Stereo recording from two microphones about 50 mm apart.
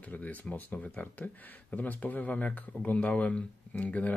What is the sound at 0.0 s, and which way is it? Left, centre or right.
Speech, left.